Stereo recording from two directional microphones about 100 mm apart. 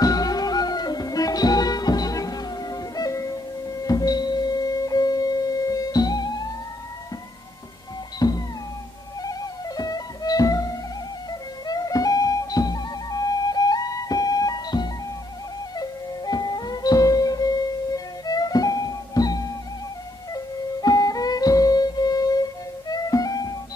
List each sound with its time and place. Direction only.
0.0 s music: 40° left (ahead or behind)
8.2 s music: 40° left (ahead or behind)